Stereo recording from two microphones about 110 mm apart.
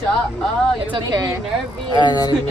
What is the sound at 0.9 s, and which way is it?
Speech, 40° right (ahead or behind).